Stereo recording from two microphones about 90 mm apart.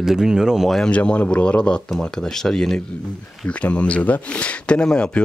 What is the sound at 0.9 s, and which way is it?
Speech, 15° left (ahead or behind).